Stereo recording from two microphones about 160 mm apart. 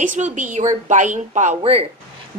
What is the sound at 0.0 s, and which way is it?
Speech, 50° right (ahead or behind).